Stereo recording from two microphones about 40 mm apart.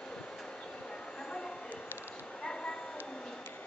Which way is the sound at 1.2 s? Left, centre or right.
Left.